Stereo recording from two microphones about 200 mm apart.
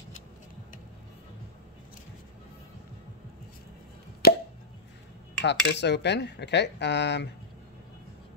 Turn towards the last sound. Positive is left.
turn(degrees=60)  # may be behind; listen again after turning